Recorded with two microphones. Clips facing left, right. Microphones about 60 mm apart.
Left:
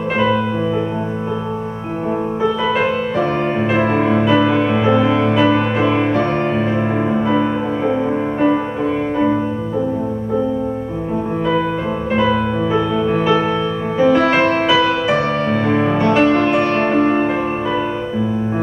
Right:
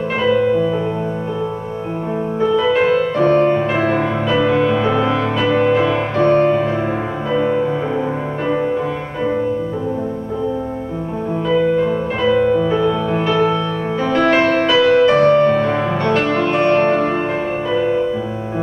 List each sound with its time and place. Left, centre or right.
2.6 s music: centre
6.2 s music: centre
12.2 s music: centre